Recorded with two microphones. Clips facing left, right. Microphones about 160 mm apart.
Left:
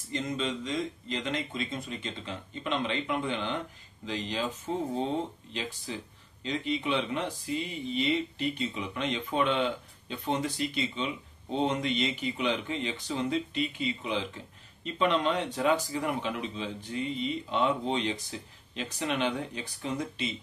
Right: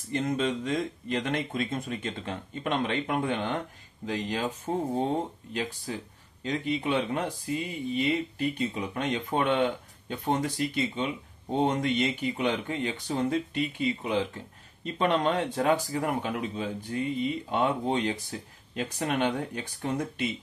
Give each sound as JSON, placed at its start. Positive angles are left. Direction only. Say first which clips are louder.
{"t": 0.1, "sound": "speech", "louder": "right 4 dB", "side_deg": -55}
{"t": 5.5, "sound": "speech", "louder": "right 4 dB", "side_deg": -50}